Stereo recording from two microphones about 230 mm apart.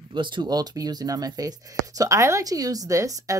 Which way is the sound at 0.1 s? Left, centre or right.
Right.